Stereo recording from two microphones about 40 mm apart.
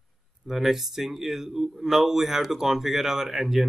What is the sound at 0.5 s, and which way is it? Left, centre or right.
Speech, centre.